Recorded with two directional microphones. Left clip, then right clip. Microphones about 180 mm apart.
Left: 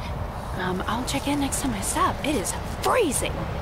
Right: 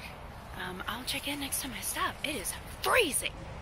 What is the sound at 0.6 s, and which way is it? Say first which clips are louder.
Speech: left 10 dB; 20° left (ahead or behind).